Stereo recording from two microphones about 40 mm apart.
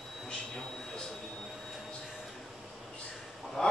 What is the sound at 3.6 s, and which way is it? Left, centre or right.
Fowl, centre.